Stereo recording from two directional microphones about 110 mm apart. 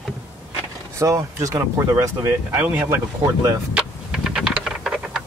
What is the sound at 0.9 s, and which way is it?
Speech, 30° right (ahead or behind).